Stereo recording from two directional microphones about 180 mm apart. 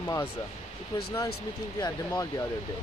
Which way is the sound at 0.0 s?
15° left (ahead or behind).